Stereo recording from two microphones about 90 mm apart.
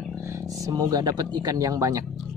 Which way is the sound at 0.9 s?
45° right (ahead or behind).